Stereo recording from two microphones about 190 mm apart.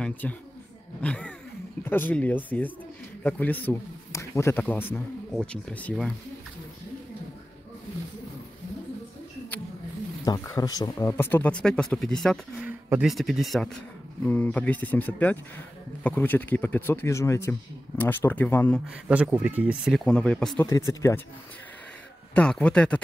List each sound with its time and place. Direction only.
0.0 s speech: 10° left (ahead or behind)
10.2 s speech: 20° left (ahead or behind)
19.0 s speech: 5° right (ahead or behind)
20.6 s speech: 15° left (ahead or behind)
22.3 s speech: 5° left (ahead or behind)